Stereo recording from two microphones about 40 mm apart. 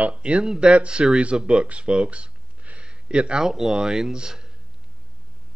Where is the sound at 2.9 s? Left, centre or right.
Right.